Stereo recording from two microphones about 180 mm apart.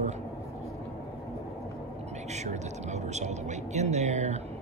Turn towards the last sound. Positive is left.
turn(degrees=-40)  # may be behind; listen again after turning